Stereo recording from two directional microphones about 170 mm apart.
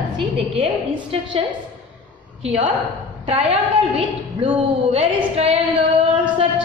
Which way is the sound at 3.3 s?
35° right (ahead or behind).